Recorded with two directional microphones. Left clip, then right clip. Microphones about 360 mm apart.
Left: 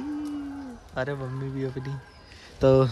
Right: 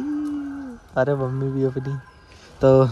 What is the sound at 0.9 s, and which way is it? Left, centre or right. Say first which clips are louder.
Speech: right 10 dB; centre.